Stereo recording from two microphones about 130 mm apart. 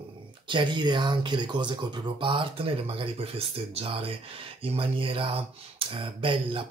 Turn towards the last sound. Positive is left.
turn(degrees=-45)  # may be behind; listen again after turning